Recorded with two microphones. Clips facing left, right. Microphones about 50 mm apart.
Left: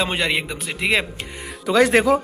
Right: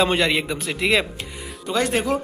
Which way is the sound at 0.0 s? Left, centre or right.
Centre.